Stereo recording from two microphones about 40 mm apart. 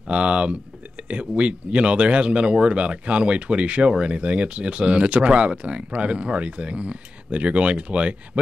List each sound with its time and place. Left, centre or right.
0.1 s speech: right